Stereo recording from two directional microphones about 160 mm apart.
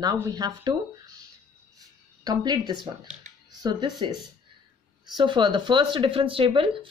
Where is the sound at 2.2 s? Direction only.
25° right (ahead or behind).